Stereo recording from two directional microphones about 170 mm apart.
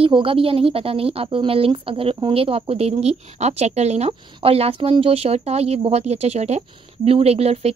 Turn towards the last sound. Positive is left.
turn(degrees=-35)  # may be behind; listen again after turning